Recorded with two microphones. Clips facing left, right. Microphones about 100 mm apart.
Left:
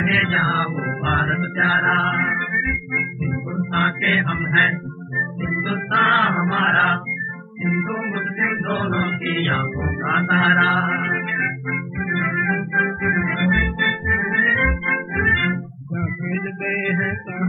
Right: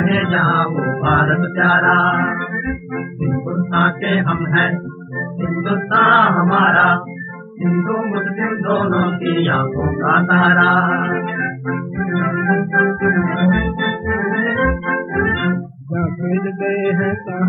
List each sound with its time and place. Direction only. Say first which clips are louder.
0.0 s music: right 5 dB; 35° right (ahead or behind)